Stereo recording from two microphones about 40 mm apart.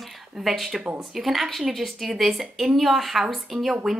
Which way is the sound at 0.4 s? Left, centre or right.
Centre.